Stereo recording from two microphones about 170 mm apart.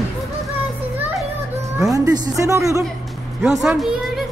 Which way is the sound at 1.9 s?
20° right (ahead or behind).